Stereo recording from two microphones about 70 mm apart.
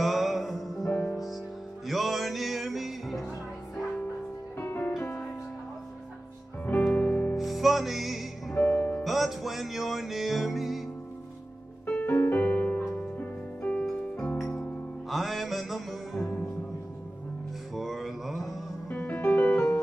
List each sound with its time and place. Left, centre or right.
0.0 s music: centre
4.6 s music: left
6.9 s music: centre
7.3 s music: centre
8.5 s music: left
9.0 s music: centre
11.8 s music: centre
15.0 s music: centre
17.7 s music: centre
18.9 s music: left